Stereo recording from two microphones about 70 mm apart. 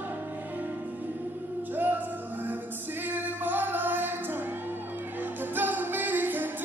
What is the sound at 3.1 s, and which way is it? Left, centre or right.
Music, right.